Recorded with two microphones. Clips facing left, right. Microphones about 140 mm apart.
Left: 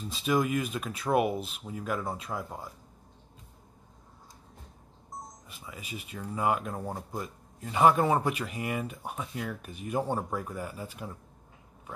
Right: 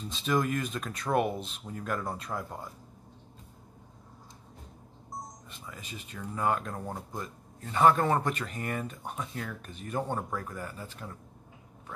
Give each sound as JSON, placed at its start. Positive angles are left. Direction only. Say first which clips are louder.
{"t": 0.1, "sound": "speech", "louder": "left 2 dB", "side_deg": 5}
{"t": 5.5, "sound": "speech", "louder": "left 2 dB", "side_deg": 5}